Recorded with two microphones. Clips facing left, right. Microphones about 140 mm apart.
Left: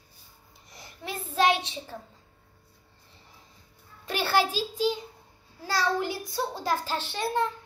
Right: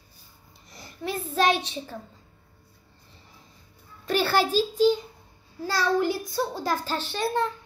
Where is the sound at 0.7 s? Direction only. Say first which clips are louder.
Right 6 dB; 20° left (ahead or behind).